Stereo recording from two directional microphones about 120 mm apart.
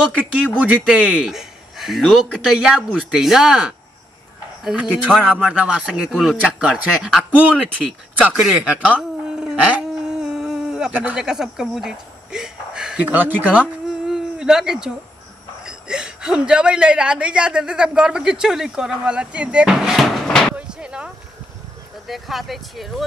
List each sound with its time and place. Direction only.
0.5 s a woman's voice: 5° right (ahead or behind)
20.5 s a sound: 10° right (ahead or behind)
22.0 s speech: centre (ahead or behind)